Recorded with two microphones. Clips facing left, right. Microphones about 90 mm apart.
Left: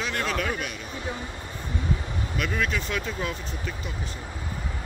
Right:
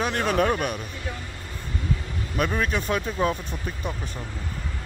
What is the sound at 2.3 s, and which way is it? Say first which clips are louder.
Speech: right 3 dB; 35° right (ahead or behind).